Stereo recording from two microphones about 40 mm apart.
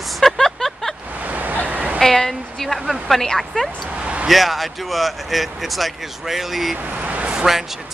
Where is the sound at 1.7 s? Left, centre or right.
Right.